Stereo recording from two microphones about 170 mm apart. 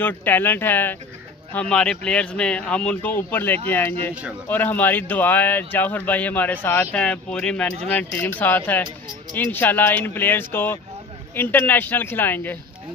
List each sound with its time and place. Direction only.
0.0 s speech: 10° left (ahead or behind)